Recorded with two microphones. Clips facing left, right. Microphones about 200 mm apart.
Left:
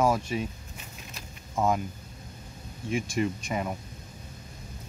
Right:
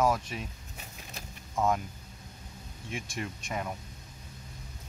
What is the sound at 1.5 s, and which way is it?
Speech, 5° left (ahead or behind).